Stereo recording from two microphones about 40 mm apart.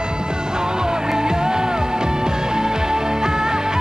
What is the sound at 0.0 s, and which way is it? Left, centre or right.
Music, right.